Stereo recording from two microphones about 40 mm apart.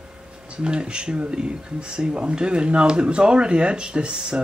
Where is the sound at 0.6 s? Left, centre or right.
Right.